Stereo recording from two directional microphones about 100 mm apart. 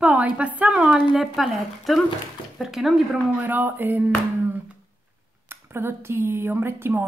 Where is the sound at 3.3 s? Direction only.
15° right (ahead or behind).